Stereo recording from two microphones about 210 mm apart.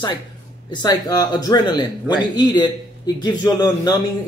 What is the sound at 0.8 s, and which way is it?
Speech, 15° left (ahead or behind).